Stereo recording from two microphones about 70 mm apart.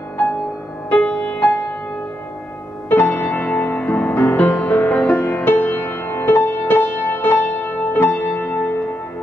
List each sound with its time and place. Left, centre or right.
0.8 s music: centre
2.9 s music: left